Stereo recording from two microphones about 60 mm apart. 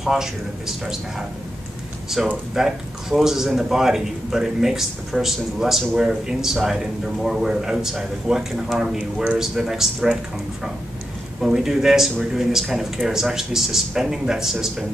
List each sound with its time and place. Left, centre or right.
0.0 s a man's voice: centre
2.2 s a man's voice: centre
8.9 s speech: right
9.4 s a man's voice: centre
11.4 s a man's voice: centre